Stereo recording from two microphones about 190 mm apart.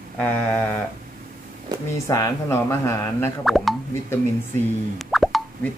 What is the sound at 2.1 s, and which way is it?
Speech, 15° left (ahead or behind).